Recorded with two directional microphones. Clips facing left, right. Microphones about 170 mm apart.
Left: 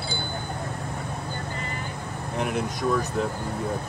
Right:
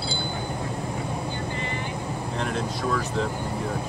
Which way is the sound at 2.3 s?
10° left (ahead or behind).